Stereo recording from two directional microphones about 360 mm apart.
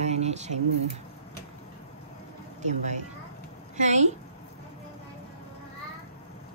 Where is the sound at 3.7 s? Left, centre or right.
Centre.